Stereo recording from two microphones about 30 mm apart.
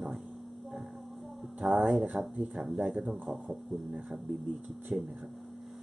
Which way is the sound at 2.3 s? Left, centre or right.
Right.